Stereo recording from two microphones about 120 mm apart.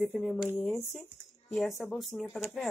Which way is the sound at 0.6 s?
5° left (ahead or behind).